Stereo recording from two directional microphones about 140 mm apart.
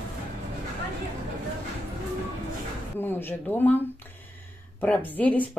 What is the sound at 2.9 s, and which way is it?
Speech, 15° left (ahead or behind).